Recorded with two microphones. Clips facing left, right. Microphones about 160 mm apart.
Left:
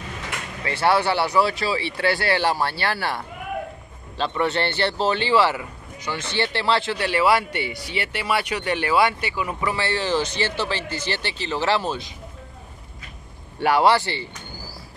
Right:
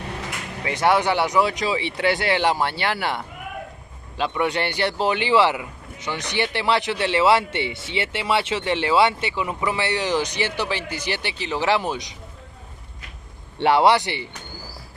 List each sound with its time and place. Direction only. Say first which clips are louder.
0.7 s speech: right 1 dB; 15° right (ahead or behind)
4.2 s speech: even; 10° right (ahead or behind)
13.6 s speech: right 1 dB; 25° right (ahead or behind)